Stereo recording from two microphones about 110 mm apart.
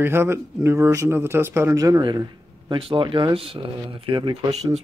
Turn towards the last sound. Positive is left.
turn(degrees=-50)  # may be behind; listen again after turning